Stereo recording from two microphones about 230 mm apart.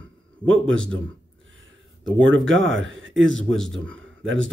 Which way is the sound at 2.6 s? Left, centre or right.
Right.